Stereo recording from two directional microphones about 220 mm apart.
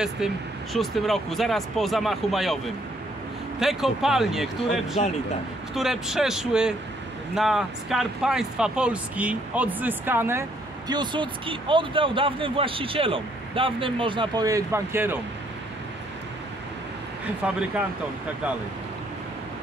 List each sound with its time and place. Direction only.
0.2 s speech: centre (ahead or behind)
10.9 s speech: 20° right (ahead or behind)